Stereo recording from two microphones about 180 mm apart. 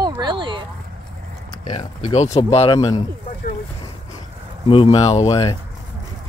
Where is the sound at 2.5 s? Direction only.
35° left (ahead or behind).